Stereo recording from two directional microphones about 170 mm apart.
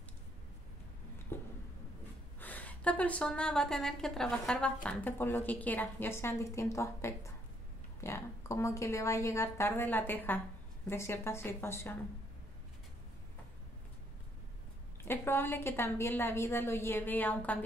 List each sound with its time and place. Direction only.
1.3 s a sound: 15° left (ahead or behind)
2.4 s a woman's voice: 10° left (ahead or behind)
15.0 s a woman's voice: 15° left (ahead or behind)